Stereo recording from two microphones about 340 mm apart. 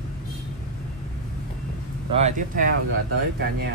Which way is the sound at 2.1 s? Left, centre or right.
Centre.